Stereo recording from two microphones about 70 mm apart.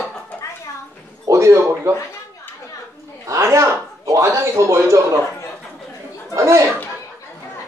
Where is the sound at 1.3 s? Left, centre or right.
Right.